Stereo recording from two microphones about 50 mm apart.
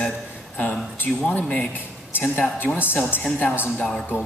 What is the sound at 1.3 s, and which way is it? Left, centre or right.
Speech, left.